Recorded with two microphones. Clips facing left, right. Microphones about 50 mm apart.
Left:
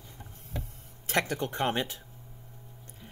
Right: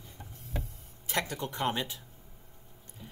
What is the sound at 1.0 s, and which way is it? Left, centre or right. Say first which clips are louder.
Speech: left 4 dB; left.